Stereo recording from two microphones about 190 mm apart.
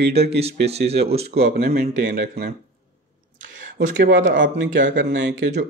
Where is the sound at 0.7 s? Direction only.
35° right (ahead or behind).